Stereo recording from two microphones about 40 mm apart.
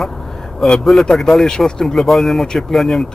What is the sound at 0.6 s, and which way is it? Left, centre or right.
Speech, centre.